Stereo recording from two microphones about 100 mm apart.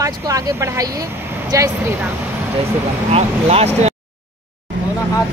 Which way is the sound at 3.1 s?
90° right.